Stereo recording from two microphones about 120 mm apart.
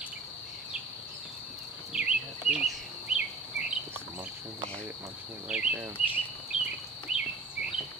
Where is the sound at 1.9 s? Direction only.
10° right (ahead or behind).